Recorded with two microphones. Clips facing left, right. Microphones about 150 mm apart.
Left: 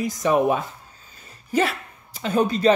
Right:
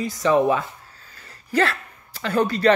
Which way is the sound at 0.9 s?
20° left (ahead or behind).